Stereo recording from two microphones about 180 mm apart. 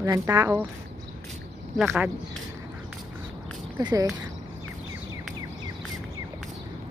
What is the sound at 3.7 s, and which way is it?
Speech, 20° right (ahead or behind).